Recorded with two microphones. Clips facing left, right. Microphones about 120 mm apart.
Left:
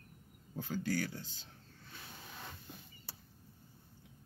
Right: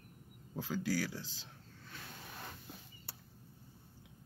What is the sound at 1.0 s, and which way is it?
Speech, 90° right.